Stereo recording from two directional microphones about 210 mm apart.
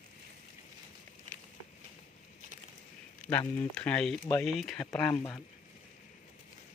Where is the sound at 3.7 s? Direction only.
5° left (ahead or behind).